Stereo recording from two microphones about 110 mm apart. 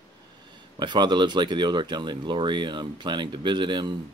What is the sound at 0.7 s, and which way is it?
Speech, 45° right (ahead or behind).